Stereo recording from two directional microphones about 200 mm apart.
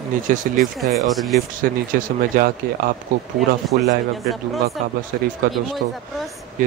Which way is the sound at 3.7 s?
55° right (ahead or behind).